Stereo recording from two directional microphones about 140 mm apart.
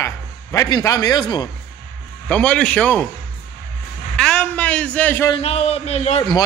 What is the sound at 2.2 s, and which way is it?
Speech, 10° left (ahead or behind).